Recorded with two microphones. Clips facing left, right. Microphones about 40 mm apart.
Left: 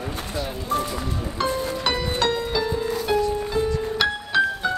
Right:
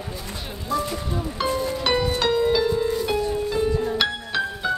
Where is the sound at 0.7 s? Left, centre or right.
Left.